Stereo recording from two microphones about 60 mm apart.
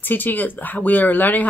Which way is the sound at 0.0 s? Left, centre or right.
Left.